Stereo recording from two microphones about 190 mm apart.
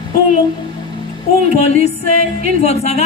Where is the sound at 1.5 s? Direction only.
35° left (ahead or behind).